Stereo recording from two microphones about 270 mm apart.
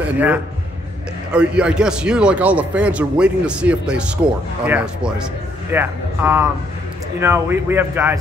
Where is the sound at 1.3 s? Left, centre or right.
Centre.